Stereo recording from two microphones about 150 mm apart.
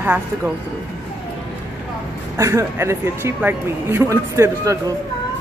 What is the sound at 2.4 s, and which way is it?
Speech, 20° right (ahead or behind).